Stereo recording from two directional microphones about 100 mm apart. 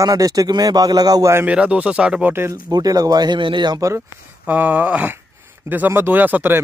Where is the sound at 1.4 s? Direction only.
10° right (ahead or behind).